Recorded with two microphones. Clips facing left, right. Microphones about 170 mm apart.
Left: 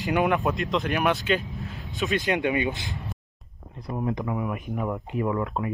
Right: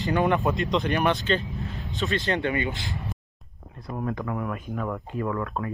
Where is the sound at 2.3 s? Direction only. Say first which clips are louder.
Left 3 dB; 15° left (ahead or behind).